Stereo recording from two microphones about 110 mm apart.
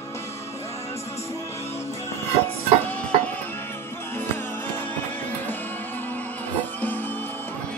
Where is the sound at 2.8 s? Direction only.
15° left (ahead or behind).